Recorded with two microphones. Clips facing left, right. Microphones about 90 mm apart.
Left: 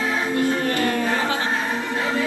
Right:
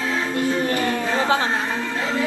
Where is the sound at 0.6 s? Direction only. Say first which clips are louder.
Even; 20° right (ahead or behind).